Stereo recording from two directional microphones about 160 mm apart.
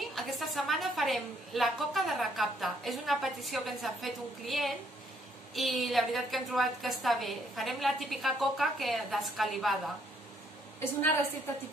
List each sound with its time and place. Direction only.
0.0 s a woman's voice: centre (ahead or behind)
10.8 s a woman's voice: 15° left (ahead or behind)